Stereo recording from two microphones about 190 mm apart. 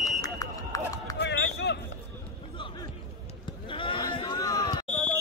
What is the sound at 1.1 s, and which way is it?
Music, 65° left (ahead or behind).